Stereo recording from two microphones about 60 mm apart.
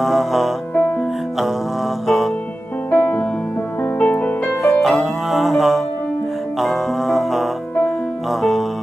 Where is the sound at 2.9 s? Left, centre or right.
Left.